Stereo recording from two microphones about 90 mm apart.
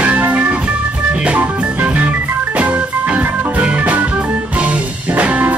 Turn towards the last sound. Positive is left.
turn(degrees=-15)  # may be behind; listen again after turning